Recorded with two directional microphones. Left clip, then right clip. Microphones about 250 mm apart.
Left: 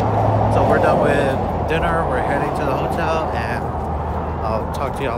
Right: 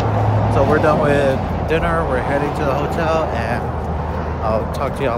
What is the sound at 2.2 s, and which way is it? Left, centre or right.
Speech, left.